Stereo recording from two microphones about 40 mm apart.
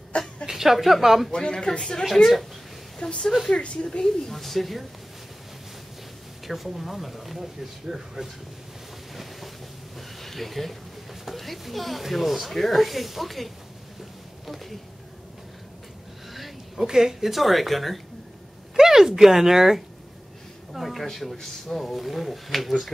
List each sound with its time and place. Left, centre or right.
0.1 s a sound: left
0.5 s speech: centre
1.3 s speech: centre
4.0 s speech: centre
6.4 s speech: centre
8.2 s speech: centre
9.1 s boat: centre
9.9 s speech: centre
14.4 s a sound: centre
16.3 s a sound: centre
16.8 s speech: centre
18.8 s speech: centre
20.7 s speech: centre